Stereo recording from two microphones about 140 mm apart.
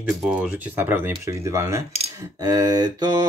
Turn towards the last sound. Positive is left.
turn(degrees=-25)  # may be behind; listen again after turning